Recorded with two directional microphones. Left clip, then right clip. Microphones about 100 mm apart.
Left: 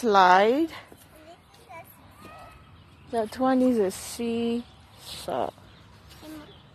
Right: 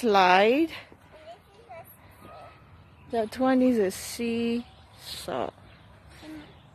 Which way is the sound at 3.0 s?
30° right (ahead or behind).